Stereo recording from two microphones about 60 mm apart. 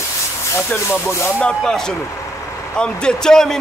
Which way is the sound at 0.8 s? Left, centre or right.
Left.